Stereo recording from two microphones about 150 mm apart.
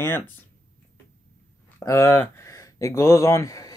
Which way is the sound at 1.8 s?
20° left (ahead or behind).